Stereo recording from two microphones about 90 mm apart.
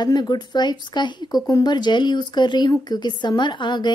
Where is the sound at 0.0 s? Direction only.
50° left (ahead or behind).